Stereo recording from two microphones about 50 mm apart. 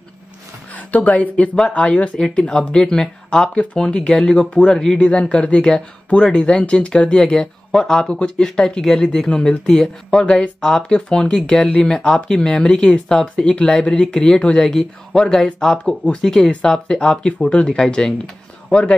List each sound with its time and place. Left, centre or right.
0.7 s speech: left
2.1 s speech: centre
18.7 s a man's voice: left